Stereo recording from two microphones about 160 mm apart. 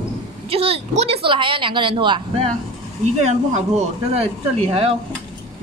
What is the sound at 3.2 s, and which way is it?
Speech, 45° right (ahead or behind).